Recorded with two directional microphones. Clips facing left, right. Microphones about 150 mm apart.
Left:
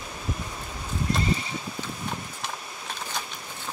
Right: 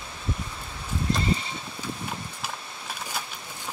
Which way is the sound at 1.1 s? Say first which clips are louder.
Even; 25° right (ahead or behind).